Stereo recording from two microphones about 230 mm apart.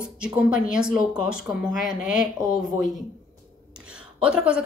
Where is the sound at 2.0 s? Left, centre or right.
Left.